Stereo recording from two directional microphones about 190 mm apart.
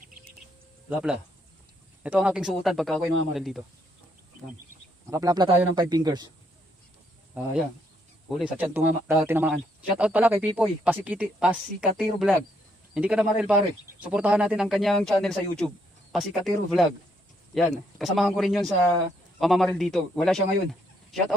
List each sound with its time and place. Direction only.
0.8 s speech: 5° right (ahead or behind)
5.1 s speech: 20° right (ahead or behind)
7.3 s speech: 10° right (ahead or behind)